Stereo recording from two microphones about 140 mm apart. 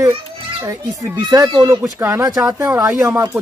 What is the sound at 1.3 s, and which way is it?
Speech, 25° right (ahead or behind).